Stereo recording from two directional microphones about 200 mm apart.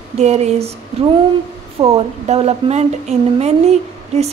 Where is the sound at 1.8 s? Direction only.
30° right (ahead or behind).